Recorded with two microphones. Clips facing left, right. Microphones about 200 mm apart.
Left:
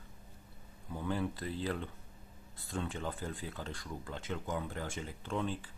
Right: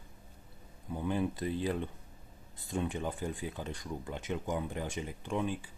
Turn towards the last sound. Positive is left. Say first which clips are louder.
# right 2 dB
turn(degrees=-15)  # may be behind; listen again after turning